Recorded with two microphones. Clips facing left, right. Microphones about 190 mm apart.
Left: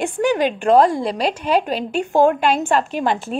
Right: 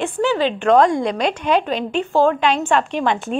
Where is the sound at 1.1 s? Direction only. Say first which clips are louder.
Right 1 dB; 35° left (ahead or behind).